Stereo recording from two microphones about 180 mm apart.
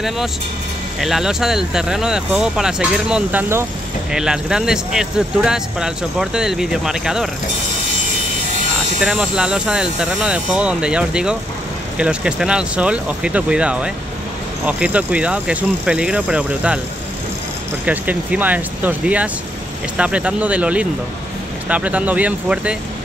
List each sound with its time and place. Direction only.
1.0 s speech: centre (ahead or behind)
9.0 s speech: 5° right (ahead or behind)
17.8 s speech: 10° right (ahead or behind)